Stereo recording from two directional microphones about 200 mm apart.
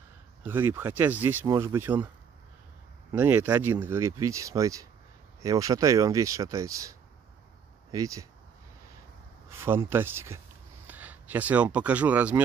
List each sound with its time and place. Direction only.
0.4 s speech: 10° right (ahead or behind)
3.2 s speech: 10° right (ahead or behind)
9.5 s speech: 10° right (ahead or behind)